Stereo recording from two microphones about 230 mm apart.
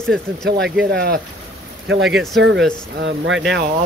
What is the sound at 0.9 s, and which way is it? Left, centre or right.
Speech, right.